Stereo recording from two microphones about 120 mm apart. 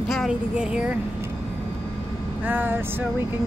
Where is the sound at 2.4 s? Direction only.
15° right (ahead or behind).